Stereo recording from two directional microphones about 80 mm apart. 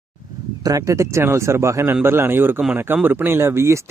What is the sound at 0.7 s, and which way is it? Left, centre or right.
Speech, right.